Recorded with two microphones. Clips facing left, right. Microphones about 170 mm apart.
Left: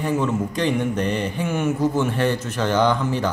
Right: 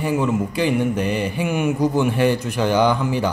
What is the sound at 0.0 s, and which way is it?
Speech, 10° right (ahead or behind).